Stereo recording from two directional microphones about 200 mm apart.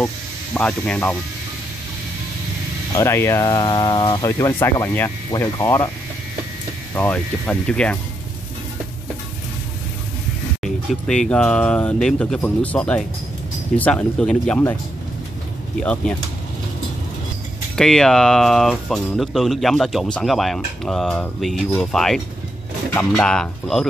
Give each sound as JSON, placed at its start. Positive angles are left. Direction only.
{"t": 0.6, "sound": "speech", "side_deg": 5}
{"t": 3.0, "sound": "speech", "side_deg": 15}
{"t": 7.0, "sound": "speech", "side_deg": 5}
{"t": 10.6, "sound": "speech", "side_deg": 5}
{"t": 15.8, "sound": "speech", "side_deg": 5}
{"t": 17.7, "sound": "speech", "side_deg": 0}